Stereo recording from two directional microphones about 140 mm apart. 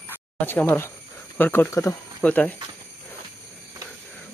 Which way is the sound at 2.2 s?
10° left (ahead or behind).